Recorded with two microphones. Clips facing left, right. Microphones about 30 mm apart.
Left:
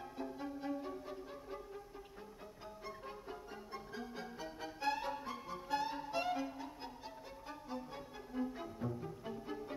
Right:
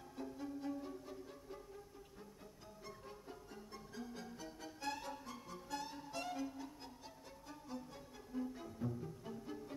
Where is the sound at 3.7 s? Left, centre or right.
Left.